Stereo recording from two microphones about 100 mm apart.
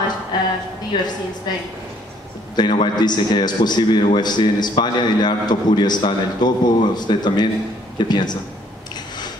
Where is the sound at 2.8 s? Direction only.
45° left (ahead or behind).